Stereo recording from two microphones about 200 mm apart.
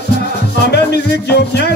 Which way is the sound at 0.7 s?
55° left (ahead or behind).